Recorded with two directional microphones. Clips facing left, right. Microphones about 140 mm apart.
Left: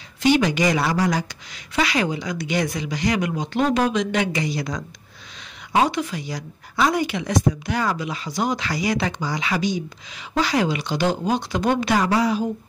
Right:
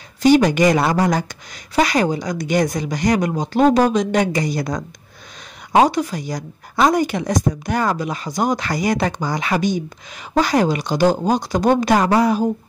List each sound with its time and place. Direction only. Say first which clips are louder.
0.2 s speech: right 5 dB; 45° right (ahead or behind)